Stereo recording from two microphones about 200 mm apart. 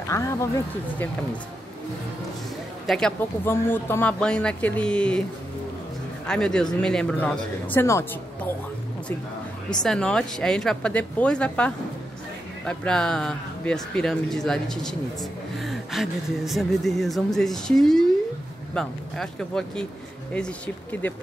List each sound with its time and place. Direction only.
0.1 s a woman's voice: 15° left (ahead or behind)
2.9 s speech: 5° left (ahead or behind)
6.2 s a woman's voice: 5° left (ahead or behind)
9.8 s speech: 5° left (ahead or behind)